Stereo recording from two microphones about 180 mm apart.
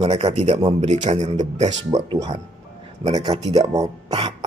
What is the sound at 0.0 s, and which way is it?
Speech, 35° right (ahead or behind).